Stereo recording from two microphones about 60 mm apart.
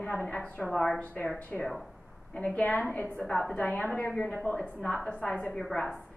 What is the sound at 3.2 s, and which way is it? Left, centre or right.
Speech, centre.